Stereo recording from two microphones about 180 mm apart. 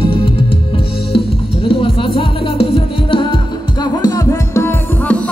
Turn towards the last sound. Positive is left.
turn(degrees=10)  # may be behind; listen again after turning